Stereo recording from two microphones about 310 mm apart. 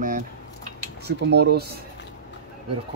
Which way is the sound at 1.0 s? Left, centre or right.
Right.